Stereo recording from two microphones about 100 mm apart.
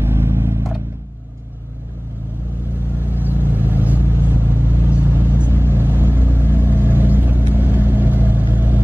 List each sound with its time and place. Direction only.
0.0 s vehicle: 25° right (ahead or behind)
3.0 s vehicle: 20° right (ahead or behind)